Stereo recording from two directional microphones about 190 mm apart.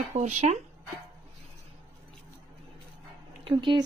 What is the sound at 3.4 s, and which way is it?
Speech, 25° right (ahead or behind).